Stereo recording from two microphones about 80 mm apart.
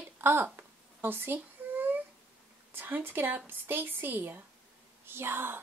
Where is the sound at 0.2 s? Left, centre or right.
Right.